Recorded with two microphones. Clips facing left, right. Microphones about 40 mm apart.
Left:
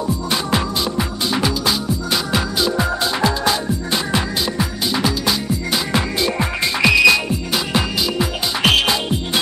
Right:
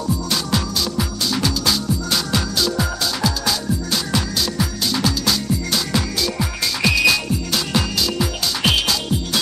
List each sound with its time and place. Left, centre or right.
0.0 s music: left